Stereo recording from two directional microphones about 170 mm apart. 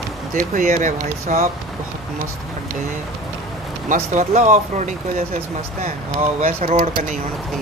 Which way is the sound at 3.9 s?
45° right (ahead or behind).